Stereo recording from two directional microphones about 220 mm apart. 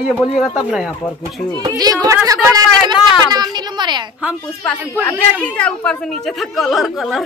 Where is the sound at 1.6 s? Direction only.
15° right (ahead or behind).